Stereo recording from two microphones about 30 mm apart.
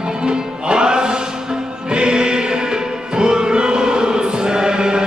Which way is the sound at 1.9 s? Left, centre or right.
Right.